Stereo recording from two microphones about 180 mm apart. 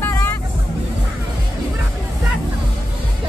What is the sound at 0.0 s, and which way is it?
Vehicle, 15° left (ahead or behind).